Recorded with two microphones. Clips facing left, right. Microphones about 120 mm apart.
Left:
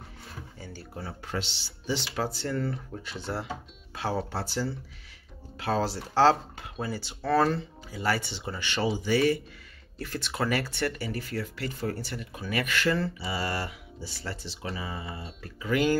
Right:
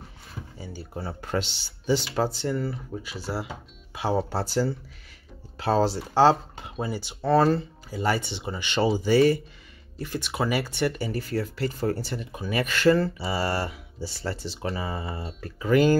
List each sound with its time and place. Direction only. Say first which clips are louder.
1.2 s speech: right 7 dB; 45° right (ahead or behind)
2.1 s speech: right 5 dB; 30° right (ahead or behind)
2.5 s speech: right 2 dB; 5° right (ahead or behind)
3.9 s speech: right 5 dB; 15° right (ahead or behind)
4.3 s speech: right 6 dB; 30° right (ahead or behind)
6.1 s speech: right 2 dB; 20° right (ahead or behind)
8.8 s speech: right 5 dB; 35° right (ahead or behind)
10.0 s speech: right 2 dB; 15° right (ahead or behind)
11.1 s speech: right 5 dB; 35° right (ahead or behind)